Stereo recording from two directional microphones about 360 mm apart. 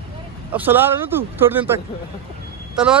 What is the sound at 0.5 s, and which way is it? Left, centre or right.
Speech, centre.